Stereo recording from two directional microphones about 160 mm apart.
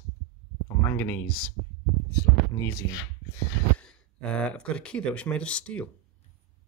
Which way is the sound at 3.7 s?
5° left (ahead or behind).